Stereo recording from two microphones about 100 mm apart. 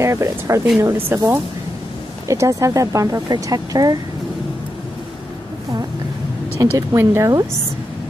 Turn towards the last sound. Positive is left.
turn(degrees=-30)  # may be behind; listen again after turning